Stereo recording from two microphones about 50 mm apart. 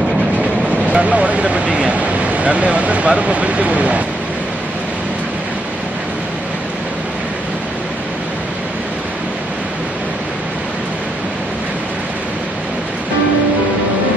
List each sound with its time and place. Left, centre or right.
0.9 s speech: right